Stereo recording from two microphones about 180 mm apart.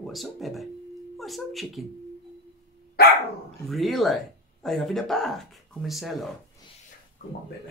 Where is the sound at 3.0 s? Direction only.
60° left (ahead or behind).